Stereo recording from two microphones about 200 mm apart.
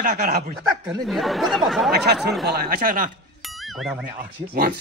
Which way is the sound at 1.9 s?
55° right (ahead or behind).